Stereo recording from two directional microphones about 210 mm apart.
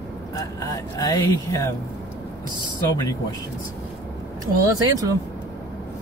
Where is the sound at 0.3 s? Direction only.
15° left (ahead or behind).